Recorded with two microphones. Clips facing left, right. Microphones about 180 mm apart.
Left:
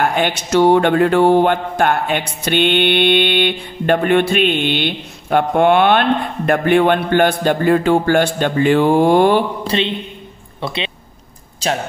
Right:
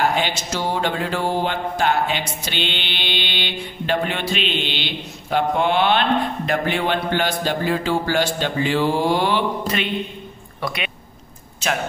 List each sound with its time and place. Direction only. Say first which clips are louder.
0.0 s speech: left 4 dB; 55° left (ahead or behind)
9.7 s a man's voice: left 4 dB; 25° left (ahead or behind)